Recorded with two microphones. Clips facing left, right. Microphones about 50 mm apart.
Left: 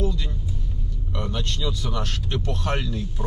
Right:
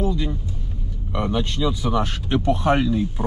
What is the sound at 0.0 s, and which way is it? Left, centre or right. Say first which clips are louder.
Vehicle: right 5 dB; centre.